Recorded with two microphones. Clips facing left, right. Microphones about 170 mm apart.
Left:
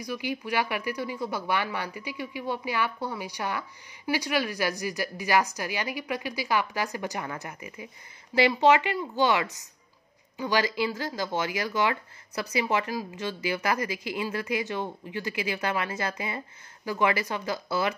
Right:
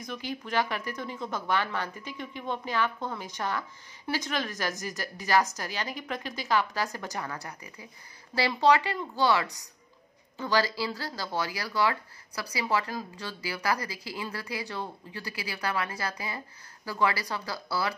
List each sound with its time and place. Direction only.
0.1 s speech: 10° left (ahead or behind)